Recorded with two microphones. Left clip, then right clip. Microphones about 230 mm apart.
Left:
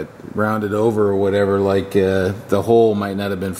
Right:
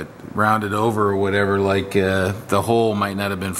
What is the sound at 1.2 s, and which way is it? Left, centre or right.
Speech, centre.